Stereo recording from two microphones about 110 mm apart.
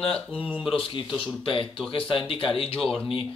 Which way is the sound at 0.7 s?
55° left (ahead or behind).